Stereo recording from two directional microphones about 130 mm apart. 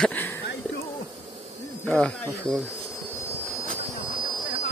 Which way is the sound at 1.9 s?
5° left (ahead or behind).